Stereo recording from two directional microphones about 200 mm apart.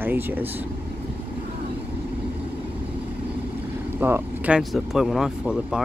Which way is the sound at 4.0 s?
10° right (ahead or behind).